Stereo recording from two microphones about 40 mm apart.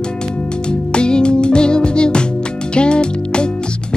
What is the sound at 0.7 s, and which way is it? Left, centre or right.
Music, left.